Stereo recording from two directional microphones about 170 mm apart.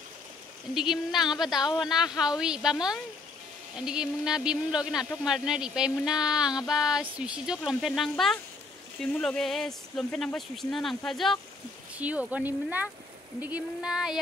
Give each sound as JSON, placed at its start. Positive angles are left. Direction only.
{"t": 0.7, "sound": "speech", "side_deg": 0}